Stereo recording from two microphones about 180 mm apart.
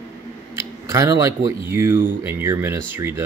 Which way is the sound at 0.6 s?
15° right (ahead or behind).